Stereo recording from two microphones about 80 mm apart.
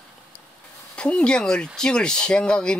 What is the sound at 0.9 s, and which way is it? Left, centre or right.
Speech, centre.